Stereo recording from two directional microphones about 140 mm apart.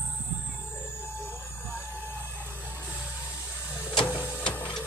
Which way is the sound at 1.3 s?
15° left (ahead or behind).